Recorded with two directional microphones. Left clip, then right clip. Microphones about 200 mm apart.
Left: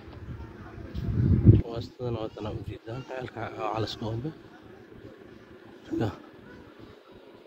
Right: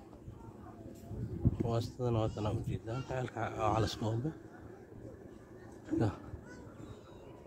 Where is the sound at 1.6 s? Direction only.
25° right (ahead or behind); by 4.1 s 10° right (ahead or behind).